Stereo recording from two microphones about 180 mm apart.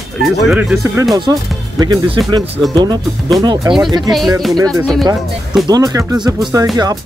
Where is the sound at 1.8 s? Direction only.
20° right (ahead or behind).